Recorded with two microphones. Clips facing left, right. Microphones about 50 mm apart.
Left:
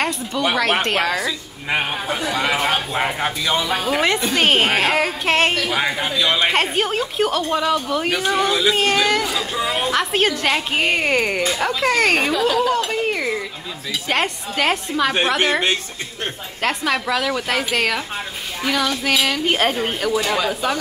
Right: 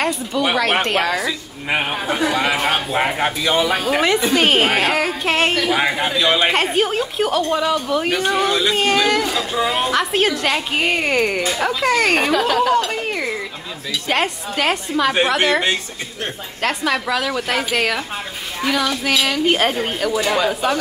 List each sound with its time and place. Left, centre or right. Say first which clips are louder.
0.0 s speech: right 1 dB; centre
5.8 s speech: right 2 dB; centre
12.3 s speech: right 2 dB; right
12.7 s speech: right 1 dB; centre
16.6 s speech: right 1 dB; centre